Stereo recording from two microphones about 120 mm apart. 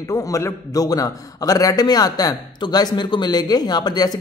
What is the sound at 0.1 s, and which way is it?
A man's voice, 25° left (ahead or behind).